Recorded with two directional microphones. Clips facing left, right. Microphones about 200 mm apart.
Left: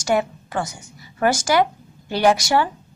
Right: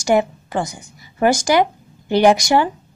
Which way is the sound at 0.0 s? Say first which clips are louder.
Right 4 dB; 15° right (ahead or behind).